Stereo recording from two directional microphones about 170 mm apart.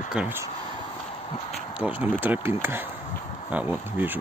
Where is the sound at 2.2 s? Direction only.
15° right (ahead or behind).